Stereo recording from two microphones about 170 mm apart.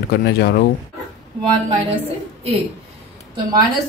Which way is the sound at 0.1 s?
70° left (ahead or behind).